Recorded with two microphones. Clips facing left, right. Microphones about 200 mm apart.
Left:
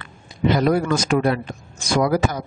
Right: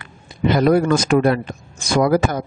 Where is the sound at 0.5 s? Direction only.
55° right (ahead or behind).